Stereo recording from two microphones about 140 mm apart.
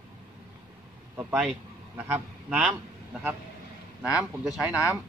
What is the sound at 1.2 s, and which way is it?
A man's voice, 10° right (ahead or behind).